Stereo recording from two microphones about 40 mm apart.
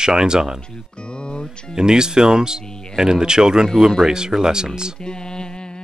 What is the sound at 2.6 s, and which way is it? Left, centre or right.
Speech, left.